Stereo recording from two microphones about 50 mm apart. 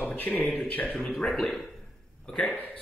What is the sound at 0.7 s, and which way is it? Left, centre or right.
Speech, left.